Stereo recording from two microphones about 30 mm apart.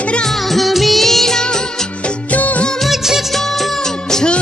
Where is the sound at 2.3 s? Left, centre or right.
Left.